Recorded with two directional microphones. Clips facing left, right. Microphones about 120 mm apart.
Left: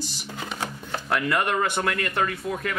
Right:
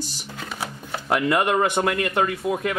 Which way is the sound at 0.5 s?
15° right (ahead or behind).